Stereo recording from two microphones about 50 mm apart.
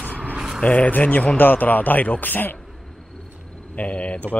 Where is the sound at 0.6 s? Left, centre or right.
Left.